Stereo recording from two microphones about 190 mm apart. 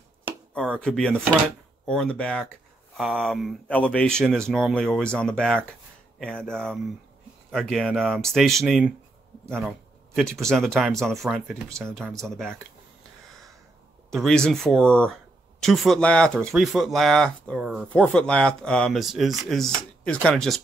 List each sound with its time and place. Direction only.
0.7 s speech: 5° left (ahead or behind)
3.0 s speech: 10° right (ahead or behind)
14.1 s speech: 5° left (ahead or behind)